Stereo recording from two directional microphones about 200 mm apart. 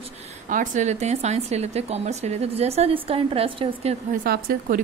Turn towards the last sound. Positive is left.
turn(degrees=-50)  # may be behind; listen again after turning